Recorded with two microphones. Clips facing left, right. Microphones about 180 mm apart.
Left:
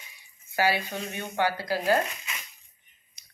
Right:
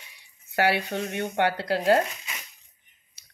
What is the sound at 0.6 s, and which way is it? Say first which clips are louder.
Speech: right 2 dB; 65° right (ahead or behind).